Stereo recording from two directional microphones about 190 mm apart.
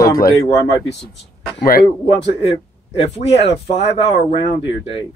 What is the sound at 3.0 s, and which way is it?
Speech, 30° left (ahead or behind).